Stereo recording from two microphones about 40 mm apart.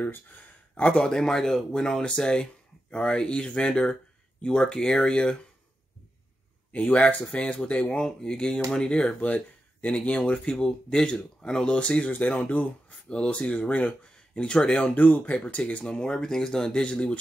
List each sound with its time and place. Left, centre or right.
0.1 s a sound: left
0.8 s speech: left
6.7 s speech: left
7.2 s speech: left
15.0 s speech: left
15.8 s speech: left
16.8 s speech: left